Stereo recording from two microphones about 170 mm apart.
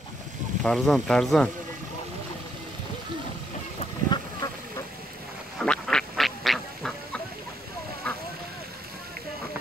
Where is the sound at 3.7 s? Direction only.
25° left (ahead or behind).